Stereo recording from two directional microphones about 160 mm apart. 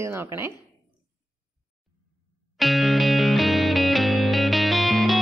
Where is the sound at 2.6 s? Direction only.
Centre (ahead or behind).